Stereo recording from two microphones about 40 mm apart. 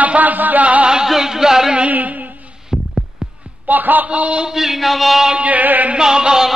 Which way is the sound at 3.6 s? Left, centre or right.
Right.